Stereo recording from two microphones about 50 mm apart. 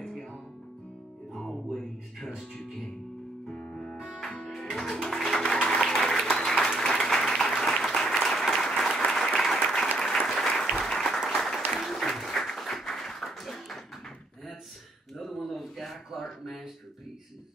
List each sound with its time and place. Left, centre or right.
0.0 s music: centre
1.7 s music: centre
3.4 s music: centre
5.4 s applause: centre
15.1 s a sound: centre